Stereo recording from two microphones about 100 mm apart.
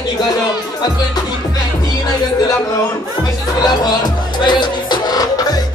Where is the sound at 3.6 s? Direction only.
45° left (ahead or behind).